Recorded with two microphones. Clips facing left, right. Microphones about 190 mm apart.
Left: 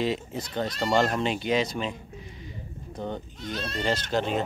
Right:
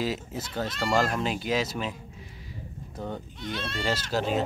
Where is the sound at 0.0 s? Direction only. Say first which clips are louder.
Left 2 dB; 5° right (ahead or behind).